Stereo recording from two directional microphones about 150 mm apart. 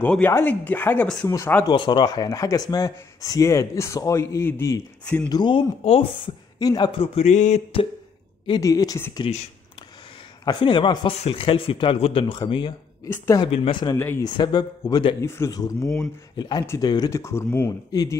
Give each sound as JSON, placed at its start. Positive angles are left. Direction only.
{"t": 0.0, "sound": "speech", "side_deg": 10}
{"t": 1.7, "sound": "speech", "side_deg": 30}
{"t": 5.3, "sound": "speech", "side_deg": 30}
{"t": 8.5, "sound": "speech", "side_deg": 25}
{"t": 9.3, "sound": "speech", "side_deg": 40}
{"t": 13.0, "sound": "speech", "side_deg": 20}
{"t": 13.5, "sound": "speech", "side_deg": 35}
{"t": 13.9, "sound": "speech", "side_deg": 15}
{"t": 14.2, "sound": "speech", "side_deg": 30}
{"t": 15.2, "sound": "speech", "side_deg": 20}